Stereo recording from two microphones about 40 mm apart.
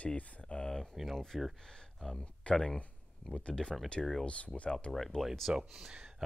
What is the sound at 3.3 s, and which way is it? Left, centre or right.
Speech, left.